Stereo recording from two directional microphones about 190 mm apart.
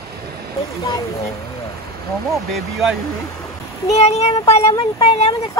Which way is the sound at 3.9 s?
35° left (ahead or behind).